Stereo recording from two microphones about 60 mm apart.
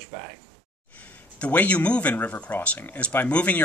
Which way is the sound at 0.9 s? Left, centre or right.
Left.